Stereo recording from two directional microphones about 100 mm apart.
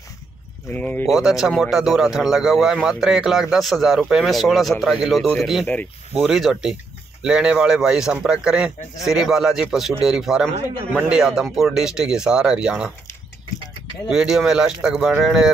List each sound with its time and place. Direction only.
0.7 s speech: 15° left (ahead or behind)
1.1 s speech: 5° right (ahead or behind)
14.1 s speech: 5° right (ahead or behind)